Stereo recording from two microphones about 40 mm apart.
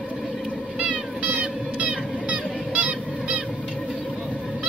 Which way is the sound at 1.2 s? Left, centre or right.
Right.